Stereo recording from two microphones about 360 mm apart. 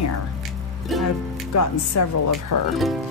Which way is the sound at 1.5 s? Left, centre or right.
Left.